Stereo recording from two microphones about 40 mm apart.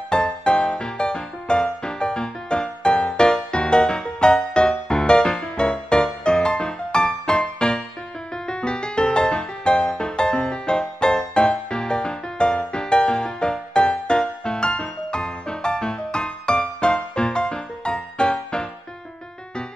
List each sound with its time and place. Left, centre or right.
0.1 s music: left